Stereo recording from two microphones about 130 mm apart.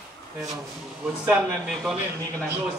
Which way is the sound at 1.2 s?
5° right (ahead or behind).